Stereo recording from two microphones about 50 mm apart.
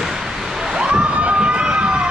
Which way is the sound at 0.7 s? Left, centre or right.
Centre.